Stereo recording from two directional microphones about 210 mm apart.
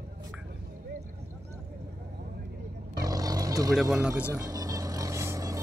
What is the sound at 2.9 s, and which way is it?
Vehicle, 15° right (ahead or behind).